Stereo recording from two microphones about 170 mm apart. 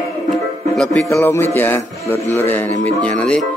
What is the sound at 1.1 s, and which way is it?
Speech, 15° left (ahead or behind).